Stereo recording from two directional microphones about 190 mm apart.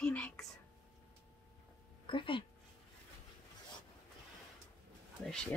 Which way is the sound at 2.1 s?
25° left (ahead or behind).